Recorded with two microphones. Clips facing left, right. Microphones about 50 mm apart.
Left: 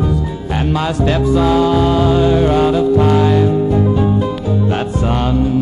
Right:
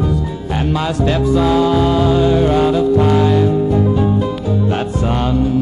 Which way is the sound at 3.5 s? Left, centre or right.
Centre.